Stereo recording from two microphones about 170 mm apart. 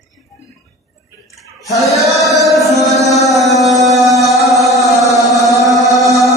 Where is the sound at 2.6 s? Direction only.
Centre (ahead or behind).